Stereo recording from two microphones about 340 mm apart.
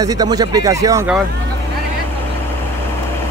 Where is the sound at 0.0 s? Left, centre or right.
Centre.